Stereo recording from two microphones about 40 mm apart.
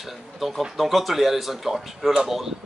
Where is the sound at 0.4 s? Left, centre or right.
Centre.